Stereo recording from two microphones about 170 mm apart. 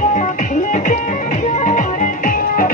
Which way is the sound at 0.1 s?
45° left (ahead or behind).